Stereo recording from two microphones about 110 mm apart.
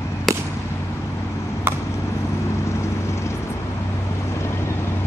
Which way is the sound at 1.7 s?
20° right (ahead or behind).